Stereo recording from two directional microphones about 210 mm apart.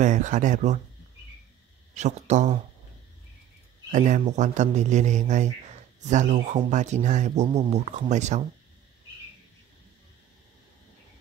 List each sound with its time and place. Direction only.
0.0 s speech: 35° right (ahead or behind)
2.0 s speech: 35° right (ahead or behind)
3.9 s speech: 35° right (ahead or behind)